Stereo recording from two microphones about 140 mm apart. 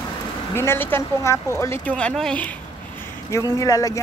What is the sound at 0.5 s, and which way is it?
A woman's voice, 15° left (ahead or behind).